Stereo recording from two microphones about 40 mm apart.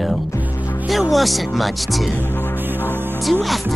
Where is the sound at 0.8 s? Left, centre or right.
Centre.